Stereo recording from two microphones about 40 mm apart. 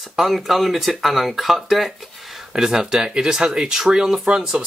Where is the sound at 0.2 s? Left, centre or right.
Centre.